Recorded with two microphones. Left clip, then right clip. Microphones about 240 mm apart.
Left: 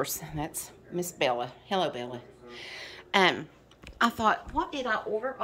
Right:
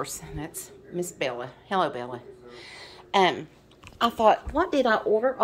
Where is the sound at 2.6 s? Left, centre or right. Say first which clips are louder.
Left 5 dB; centre.